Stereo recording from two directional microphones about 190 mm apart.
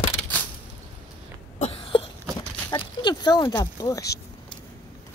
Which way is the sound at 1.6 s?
30° left (ahead or behind).